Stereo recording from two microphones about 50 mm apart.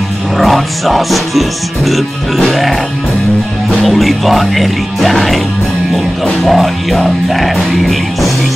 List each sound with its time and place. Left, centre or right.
0.4 s music: centre
1.9 s speech: centre
3.8 s speech: centre
6.2 s music: centre
7.5 s speech: centre